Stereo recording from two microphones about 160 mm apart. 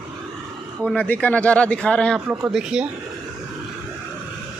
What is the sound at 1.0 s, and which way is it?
Speech, 10° left (ahead or behind).